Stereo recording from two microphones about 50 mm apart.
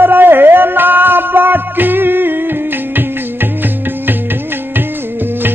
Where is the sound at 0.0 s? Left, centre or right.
Right.